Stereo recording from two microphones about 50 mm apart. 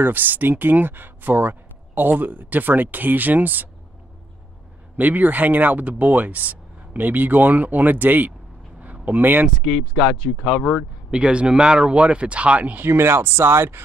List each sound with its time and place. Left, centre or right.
0.0 s speech: right
4.9 s speech: right
9.6 s speech: centre
11.1 s speech: right
12.8 s speech: right